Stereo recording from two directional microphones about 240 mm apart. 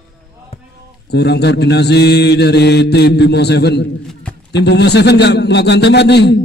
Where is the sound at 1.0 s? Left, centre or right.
Left.